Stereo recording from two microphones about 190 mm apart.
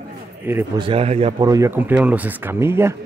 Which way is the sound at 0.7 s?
30° right (ahead or behind).